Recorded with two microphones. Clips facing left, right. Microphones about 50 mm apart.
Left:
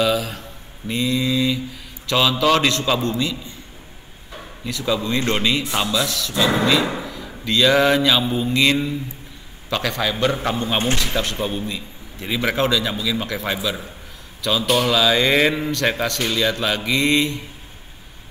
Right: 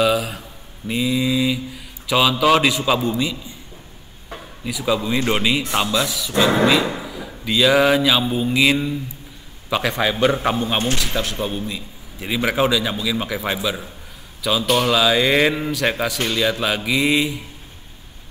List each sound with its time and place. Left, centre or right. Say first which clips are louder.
0.0 s mantra: right 2 dB; centre
2.0 s a man's voice: right 2 dB; centre
4.6 s a man's voice: right 1 dB; centre
7.0 s drawer open or close: even; centre
7.4 s a man's voice: right 1 dB; centre
14.6 s mantra: right 1 dB; centre